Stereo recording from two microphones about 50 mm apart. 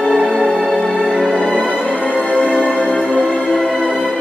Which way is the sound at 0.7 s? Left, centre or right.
Centre.